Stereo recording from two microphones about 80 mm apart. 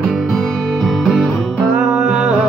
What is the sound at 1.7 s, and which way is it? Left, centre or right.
Music, centre.